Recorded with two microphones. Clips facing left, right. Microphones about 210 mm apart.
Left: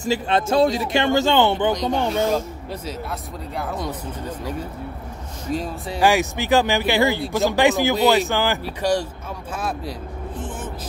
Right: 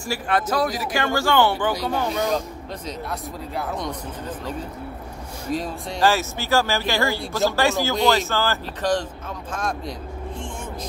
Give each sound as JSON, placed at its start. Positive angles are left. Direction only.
{"t": 0.0, "sound": "speech", "side_deg": 20}
{"t": 3.1, "sound": "speech", "side_deg": 0}
{"t": 5.5, "sound": "speech", "side_deg": 0}
{"t": 6.0, "sound": "speech", "side_deg": 15}